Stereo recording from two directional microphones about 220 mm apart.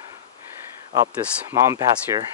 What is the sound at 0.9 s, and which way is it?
Speech, 10° right (ahead or behind).